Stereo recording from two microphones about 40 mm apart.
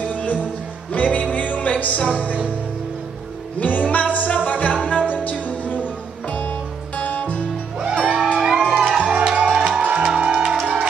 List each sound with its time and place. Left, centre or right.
0.0 s music: left
3.5 s music: left
7.2 s music: left
8.1 s music: right
8.4 s music: centre